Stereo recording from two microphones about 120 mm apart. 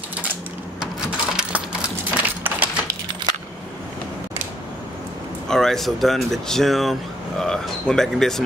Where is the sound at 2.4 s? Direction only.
15° right (ahead or behind).